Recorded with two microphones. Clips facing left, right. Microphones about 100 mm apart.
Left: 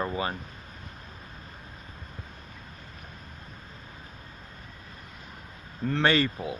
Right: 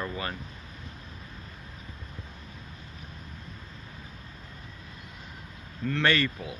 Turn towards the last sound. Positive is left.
turn(degrees=30)  # may be behind; listen again after turning